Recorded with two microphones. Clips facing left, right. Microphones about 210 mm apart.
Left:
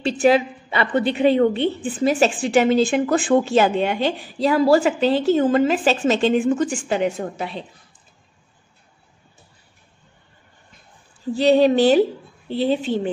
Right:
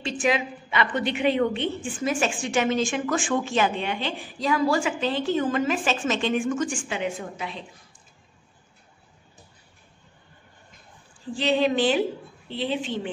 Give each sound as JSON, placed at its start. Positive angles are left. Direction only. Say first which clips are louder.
{"t": 0.0, "sound": "speech", "louder": "left 8 dB", "side_deg": 35}
{"t": 11.3, "sound": "speech", "louder": "left 8 dB", "side_deg": 40}